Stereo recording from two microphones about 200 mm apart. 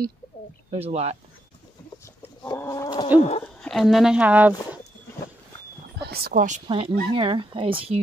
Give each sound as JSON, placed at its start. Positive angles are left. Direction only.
{"t": 0.7, "sound": "speech", "side_deg": -30}
{"t": 2.4, "sound": "chicken", "side_deg": 15}
{"t": 3.2, "sound": "speech", "side_deg": 35}
{"t": 3.6, "sound": "speech", "side_deg": 0}
{"t": 6.0, "sound": "speech", "side_deg": -50}
{"t": 6.7, "sound": "speech", "side_deg": -25}